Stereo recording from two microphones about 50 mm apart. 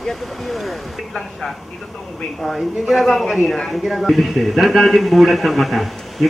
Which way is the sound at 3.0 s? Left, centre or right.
Centre.